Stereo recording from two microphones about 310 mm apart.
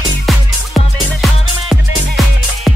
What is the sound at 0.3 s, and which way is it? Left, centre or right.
Music, centre.